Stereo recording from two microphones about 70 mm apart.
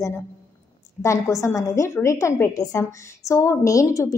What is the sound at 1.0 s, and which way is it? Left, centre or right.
A woman's voice, left.